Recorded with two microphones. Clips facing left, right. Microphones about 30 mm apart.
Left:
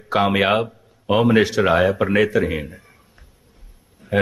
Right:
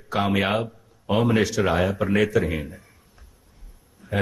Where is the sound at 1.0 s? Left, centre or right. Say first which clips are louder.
Left 5 dB; centre.